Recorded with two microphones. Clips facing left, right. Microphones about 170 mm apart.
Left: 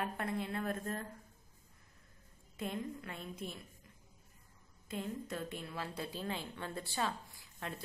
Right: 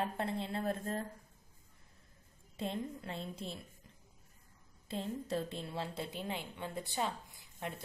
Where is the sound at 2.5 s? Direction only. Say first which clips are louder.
Right 1 dB; 30° right (ahead or behind).